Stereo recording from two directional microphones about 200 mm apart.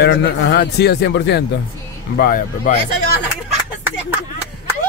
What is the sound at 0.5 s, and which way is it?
Speech, 55° left (ahead or behind).